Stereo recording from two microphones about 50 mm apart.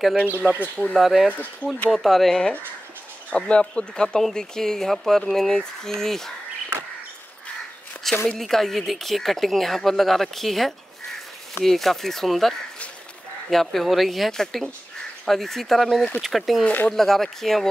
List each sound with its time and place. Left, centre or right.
0.4 s speech: right
0.9 s speech: centre
1.3 s speech: left
1.9 s speech: centre
3.3 s speech: left
8.0 s speech: centre
16.6 s speech: left
16.9 s speech: centre